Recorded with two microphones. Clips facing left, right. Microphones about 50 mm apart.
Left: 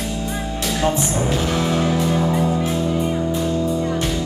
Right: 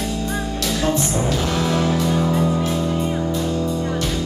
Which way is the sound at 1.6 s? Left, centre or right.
Centre.